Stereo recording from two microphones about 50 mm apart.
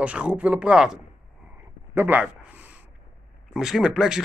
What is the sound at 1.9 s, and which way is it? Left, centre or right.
Speech, right.